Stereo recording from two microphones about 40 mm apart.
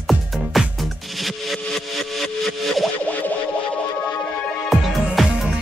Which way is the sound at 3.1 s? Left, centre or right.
Left.